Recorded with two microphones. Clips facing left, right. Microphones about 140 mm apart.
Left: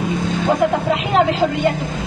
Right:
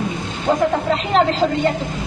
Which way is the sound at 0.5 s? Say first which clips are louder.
Even; 10° left (ahead or behind).